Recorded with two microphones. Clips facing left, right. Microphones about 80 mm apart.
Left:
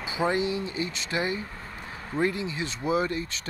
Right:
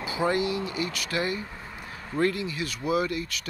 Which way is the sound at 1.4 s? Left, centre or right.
Centre.